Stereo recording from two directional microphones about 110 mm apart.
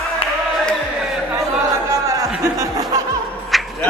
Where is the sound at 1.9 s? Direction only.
30° right (ahead or behind).